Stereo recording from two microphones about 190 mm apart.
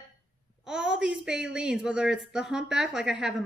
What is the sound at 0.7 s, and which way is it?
Speech, 5° right (ahead or behind).